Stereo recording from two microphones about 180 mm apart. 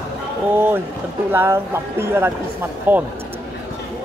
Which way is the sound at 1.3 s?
15° right (ahead or behind).